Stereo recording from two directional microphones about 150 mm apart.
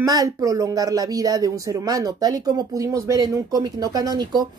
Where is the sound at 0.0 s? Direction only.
25° right (ahead or behind).